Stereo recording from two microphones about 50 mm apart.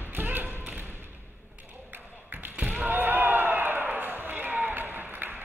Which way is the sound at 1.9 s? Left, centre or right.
Right.